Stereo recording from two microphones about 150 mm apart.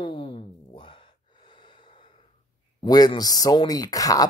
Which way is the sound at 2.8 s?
25° left (ahead or behind).